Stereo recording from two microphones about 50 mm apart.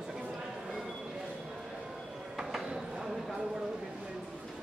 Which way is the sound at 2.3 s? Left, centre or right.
Centre.